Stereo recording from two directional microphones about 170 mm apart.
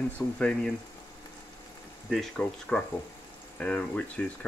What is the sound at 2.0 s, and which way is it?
Speech, centre (ahead or behind).